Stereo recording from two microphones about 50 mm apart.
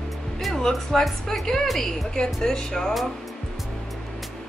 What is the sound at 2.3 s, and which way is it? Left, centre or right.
Speech, centre.